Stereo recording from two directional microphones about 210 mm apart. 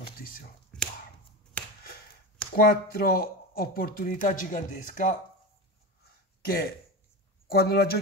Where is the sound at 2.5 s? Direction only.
45° left (ahead or behind).